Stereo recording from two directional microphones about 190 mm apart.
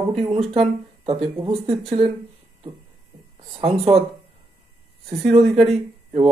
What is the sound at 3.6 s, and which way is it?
Speech, 30° right (ahead or behind).